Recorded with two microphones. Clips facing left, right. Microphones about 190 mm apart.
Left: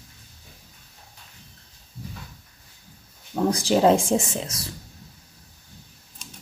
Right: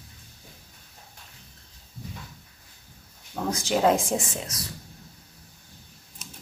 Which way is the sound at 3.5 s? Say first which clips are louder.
Left 4 dB; 35° left (ahead or behind).